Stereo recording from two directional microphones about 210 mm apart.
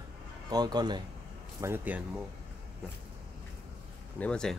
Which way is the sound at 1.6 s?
10° right (ahead or behind).